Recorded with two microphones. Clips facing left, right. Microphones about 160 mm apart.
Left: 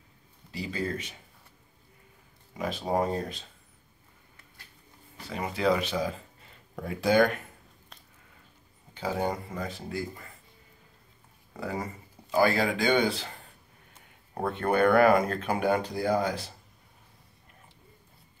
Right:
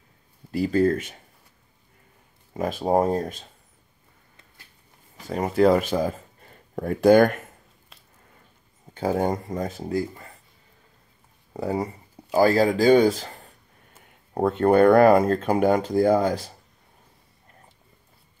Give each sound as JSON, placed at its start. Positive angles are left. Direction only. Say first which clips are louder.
{"t": 0.5, "sound": "speech", "louder": "right 12 dB", "side_deg": -50}
{"t": 2.5, "sound": "speech", "louder": "right 7 dB", "side_deg": -50}
{"t": 5.3, "sound": "speech", "louder": "right 8 dB", "side_deg": -45}
{"t": 8.9, "sound": "speech", "louder": "right 6 dB", "side_deg": -45}
{"t": 11.5, "sound": "speech", "louder": "right 7 dB", "side_deg": -35}